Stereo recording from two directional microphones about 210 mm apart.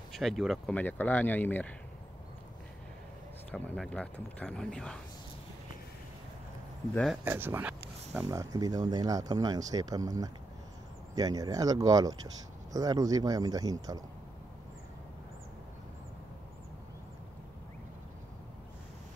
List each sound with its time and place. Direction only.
0.1 s speech: centre (ahead or behind)
3.5 s speech: 5° left (ahead or behind)
6.9 s speech: 5° left (ahead or behind)
7.2 s speech: 10° right (ahead or behind)